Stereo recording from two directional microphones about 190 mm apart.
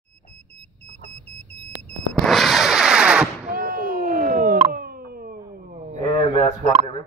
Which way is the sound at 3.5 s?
50° right (ahead or behind).